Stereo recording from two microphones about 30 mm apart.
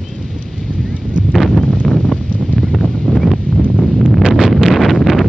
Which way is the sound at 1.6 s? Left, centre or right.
Left.